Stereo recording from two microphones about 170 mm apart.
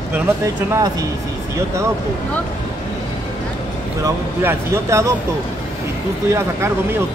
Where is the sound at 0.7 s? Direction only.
20° right (ahead or behind).